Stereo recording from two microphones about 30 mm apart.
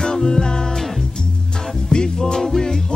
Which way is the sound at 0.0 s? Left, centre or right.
Centre.